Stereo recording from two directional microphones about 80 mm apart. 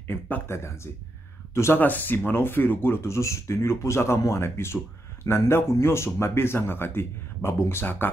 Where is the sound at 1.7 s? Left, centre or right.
Left.